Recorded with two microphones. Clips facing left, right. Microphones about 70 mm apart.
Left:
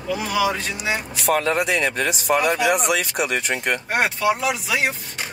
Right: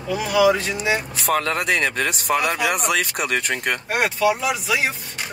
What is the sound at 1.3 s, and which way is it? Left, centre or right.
Speech, right.